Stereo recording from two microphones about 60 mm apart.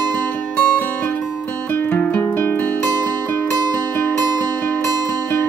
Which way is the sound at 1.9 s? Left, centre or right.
Left.